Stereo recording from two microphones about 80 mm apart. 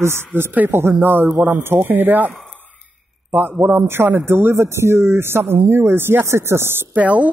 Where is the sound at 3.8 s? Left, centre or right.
Right.